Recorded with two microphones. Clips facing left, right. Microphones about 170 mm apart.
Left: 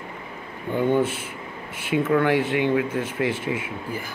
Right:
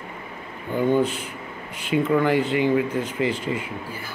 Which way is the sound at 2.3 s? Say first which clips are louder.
Right 1 dB; 65° left (ahead or behind).